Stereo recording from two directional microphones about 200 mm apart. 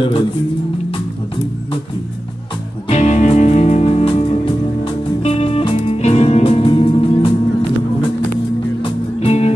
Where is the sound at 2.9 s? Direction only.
35° left (ahead or behind).